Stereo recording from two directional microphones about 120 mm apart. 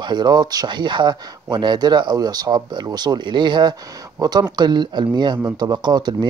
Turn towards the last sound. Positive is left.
turn(degrees=-35)  # may be behind; listen again after turning